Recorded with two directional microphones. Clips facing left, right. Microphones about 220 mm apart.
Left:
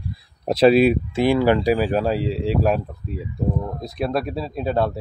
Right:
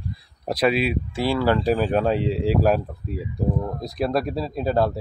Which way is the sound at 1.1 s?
20° left (ahead or behind).